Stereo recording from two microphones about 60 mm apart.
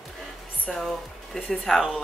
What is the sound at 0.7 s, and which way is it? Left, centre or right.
Speech, centre.